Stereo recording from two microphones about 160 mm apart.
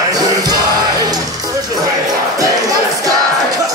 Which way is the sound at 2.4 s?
20° right (ahead or behind).